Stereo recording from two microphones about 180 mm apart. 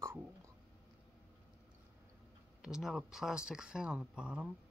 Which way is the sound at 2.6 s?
Centre (ahead or behind).